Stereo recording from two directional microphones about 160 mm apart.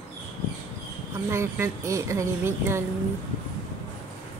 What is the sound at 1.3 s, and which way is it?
Speech, 15° right (ahead or behind).